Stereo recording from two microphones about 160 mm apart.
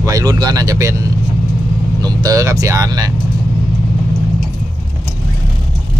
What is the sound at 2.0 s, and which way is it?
Speech, 20° right (ahead or behind).